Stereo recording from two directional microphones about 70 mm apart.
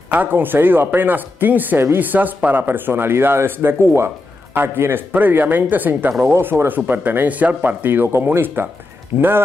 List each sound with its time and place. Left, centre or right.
0.1 s speech: right